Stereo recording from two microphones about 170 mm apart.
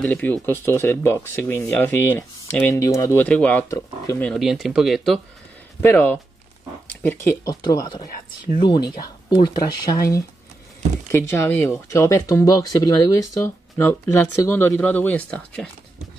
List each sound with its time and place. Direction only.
0.0 s speech: 10° left (ahead or behind)
4.3 s speech: centre (ahead or behind)
5.8 s speech: 10° left (ahead or behind)
7.4 s speech: 25° left (ahead or behind); by 15.7 s 5° left (ahead or behind)